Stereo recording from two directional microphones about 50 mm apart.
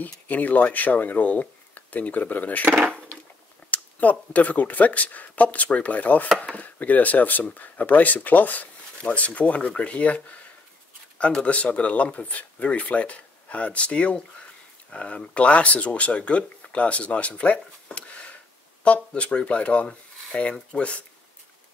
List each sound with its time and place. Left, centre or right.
0.0 s speech: left
3.7 s speech: left